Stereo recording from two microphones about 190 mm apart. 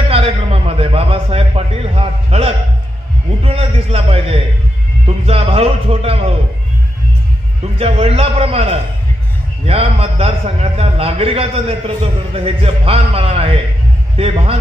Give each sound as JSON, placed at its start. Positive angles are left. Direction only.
{"t": 0.1, "sound": "a man's voice", "side_deg": -30}
{"t": 7.8, "sound": "a man's voice", "side_deg": -30}